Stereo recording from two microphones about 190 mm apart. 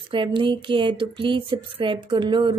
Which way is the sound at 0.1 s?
25° right (ahead or behind).